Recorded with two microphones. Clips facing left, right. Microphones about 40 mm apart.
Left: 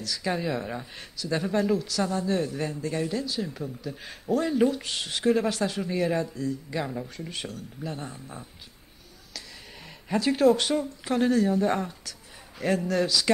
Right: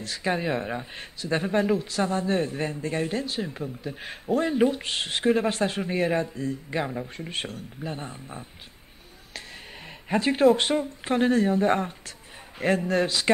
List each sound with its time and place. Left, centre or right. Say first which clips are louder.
0.0 s speech: right 2 dB; right
5.2 s speech: even; right
5.6 s speech: right 2 dB; right
6.8 s speech: right 3 dB; centre
7.2 s speech: right 3 dB; right
10.0 s speech: right 1 dB; right